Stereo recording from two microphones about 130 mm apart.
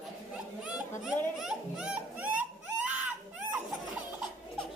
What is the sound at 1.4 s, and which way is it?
Music, 5° right (ahead or behind).